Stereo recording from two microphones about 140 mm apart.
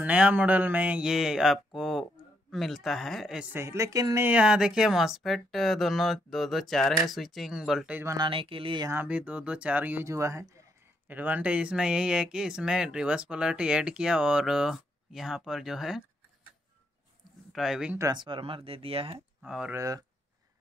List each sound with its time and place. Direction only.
0.0 s speech: 10° right (ahead or behind)
3.5 s a woman's voice: 20° right (ahead or behind)
4.3 s speech: 5° right (ahead or behind)
8.0 s a woman's voice: 25° right (ahead or behind)
8.3 s speech: 40° right (ahead or behind)
8.8 s speech: 15° right (ahead or behind)
17.5 s speech: centre (ahead or behind)
17.9 s speech: 30° right (ahead or behind)
19.4 s speech: 5° right (ahead or behind)
19.7 s a woman's voice: 25° right (ahead or behind)